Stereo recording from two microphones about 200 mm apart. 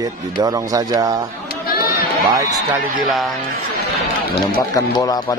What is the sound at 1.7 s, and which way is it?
Sheep, 50° left (ahead or behind).